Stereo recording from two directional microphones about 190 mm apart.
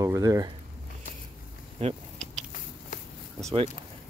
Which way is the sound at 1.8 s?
30° right (ahead or behind).